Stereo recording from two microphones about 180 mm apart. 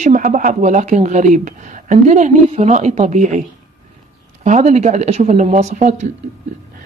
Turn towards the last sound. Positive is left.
turn(degrees=-40)  # may be behind; listen again after turning